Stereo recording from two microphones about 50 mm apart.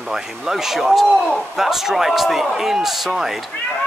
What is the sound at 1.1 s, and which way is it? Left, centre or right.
Speech, centre.